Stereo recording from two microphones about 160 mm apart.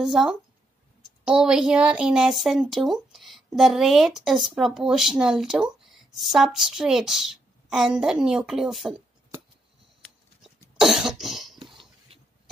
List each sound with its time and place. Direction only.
0.0 s a woman's voice: 5° right (ahead or behind)
10.0 s cough: centre (ahead or behind)
11.6 s cough: 30° right (ahead or behind)